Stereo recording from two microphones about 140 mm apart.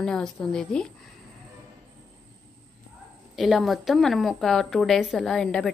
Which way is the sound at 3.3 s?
Centre (ahead or behind).